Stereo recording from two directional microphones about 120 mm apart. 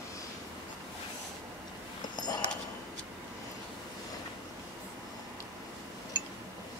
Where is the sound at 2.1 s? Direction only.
35° left (ahead or behind).